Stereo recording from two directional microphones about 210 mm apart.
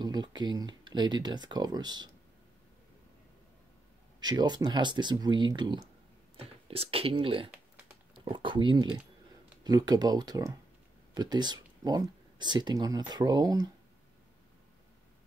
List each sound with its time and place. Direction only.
0.0 s speech: 20° right (ahead or behind)
4.2 s speech: 20° right (ahead or behind)